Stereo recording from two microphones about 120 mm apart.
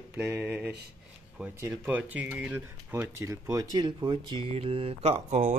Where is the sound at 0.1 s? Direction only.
15° right (ahead or behind).